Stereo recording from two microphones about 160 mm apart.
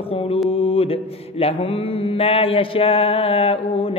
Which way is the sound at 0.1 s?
35° left (ahead or behind).